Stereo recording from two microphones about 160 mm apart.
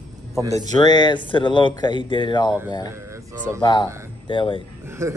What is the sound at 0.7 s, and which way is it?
Speech, 25° left (ahead or behind).